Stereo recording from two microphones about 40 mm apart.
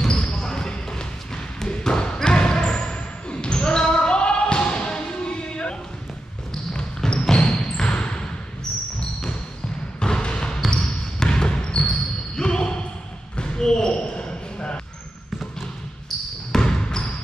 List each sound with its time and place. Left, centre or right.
0.1 s basketball bounce: left
7.1 s basketball bounce: left
9.9 s basketball bounce: left
16.5 s basketball bounce: centre